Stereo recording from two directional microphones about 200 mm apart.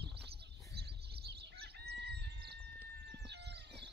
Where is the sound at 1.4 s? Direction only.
55° right (ahead or behind).